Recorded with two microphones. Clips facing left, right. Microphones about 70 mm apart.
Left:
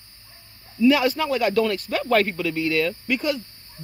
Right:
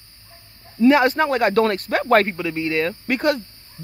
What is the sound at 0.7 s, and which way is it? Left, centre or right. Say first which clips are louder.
Speech: right 3 dB; right.